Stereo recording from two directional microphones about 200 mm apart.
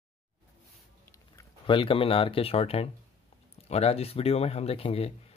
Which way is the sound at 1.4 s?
25° left (ahead or behind).